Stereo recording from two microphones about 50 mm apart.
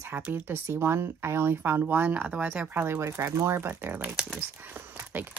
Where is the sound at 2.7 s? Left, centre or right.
Right.